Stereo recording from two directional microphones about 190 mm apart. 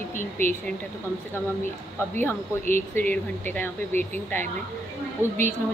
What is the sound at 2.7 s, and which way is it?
Speech, 10° left (ahead or behind).